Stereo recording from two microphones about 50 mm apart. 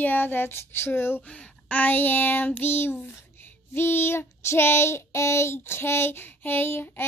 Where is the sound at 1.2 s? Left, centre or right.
Left.